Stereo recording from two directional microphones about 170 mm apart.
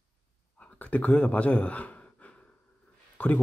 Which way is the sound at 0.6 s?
10° left (ahead or behind).